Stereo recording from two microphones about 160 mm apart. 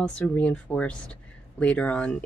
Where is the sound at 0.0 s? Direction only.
10° left (ahead or behind).